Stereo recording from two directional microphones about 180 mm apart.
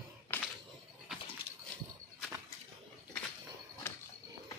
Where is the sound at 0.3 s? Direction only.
10° left (ahead or behind).